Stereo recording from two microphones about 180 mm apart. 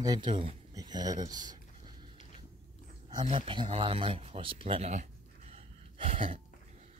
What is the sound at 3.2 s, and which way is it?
Speech, 30° right (ahead or behind).